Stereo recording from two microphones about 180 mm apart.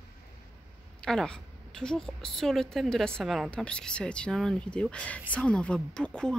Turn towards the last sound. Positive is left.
turn(degrees=5)  # may be behind; listen again after turning